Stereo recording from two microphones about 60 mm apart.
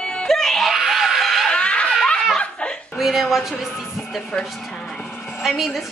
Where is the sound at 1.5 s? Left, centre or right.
Centre.